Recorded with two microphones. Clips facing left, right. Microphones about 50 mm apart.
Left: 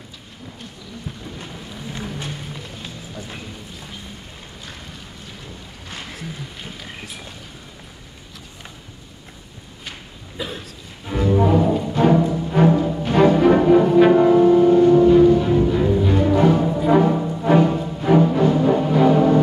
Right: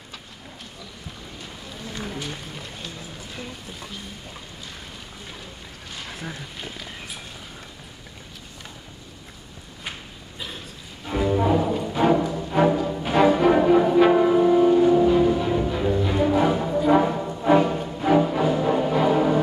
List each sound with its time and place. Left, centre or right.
10.4 s a sound: left
11.1 s music: centre
16.5 s music: centre